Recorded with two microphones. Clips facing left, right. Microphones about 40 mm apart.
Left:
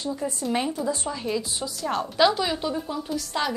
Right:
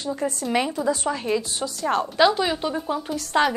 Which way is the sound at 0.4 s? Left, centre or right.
Right.